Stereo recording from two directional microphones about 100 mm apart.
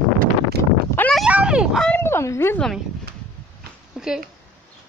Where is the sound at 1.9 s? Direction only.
25° left (ahead or behind).